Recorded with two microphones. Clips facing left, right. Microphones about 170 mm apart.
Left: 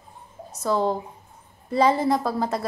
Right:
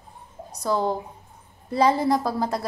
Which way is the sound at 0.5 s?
15° right (ahead or behind).